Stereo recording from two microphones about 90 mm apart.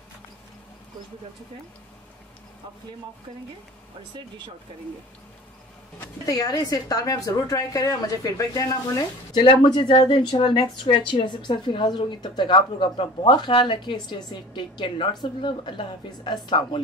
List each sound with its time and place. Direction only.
6.2 s a woman's voice: 45° left (ahead or behind)
9.3 s speech: 70° left (ahead or behind)
16.3 s speech: 65° left (ahead or behind)